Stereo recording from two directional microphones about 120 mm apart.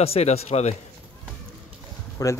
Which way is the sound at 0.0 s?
60° left (ahead or behind).